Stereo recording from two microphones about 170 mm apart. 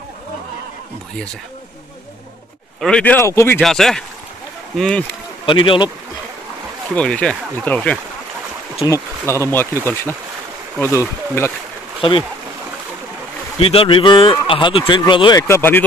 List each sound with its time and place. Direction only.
2.8 s speech: 5° left (ahead or behind)
3.6 s a man's voice: centre (ahead or behind)
5.4 s speech: 30° left (ahead or behind)
7.0 s speech: 5° left (ahead or behind)
12.0 s speech: 30° left (ahead or behind)
13.6 s speech: 35° left (ahead or behind); by 15.8 s 15° left (ahead or behind)